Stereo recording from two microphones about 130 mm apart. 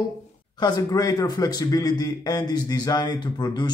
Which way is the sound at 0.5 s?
30° left (ahead or behind).